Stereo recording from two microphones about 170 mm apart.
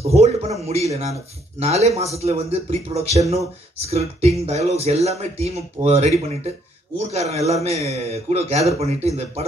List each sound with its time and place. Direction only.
0.1 s speech: 40° right (ahead or behind)